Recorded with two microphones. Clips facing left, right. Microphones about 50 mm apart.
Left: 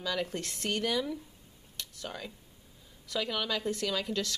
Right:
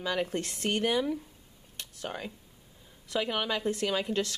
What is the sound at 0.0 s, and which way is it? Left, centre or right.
Speech, right.